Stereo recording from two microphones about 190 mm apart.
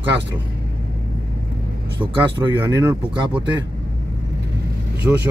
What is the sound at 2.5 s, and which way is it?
Speech, 15° right (ahead or behind).